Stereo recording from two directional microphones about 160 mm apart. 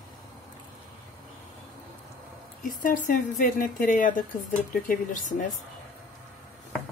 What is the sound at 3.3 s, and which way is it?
Speech, 60° left (ahead or behind).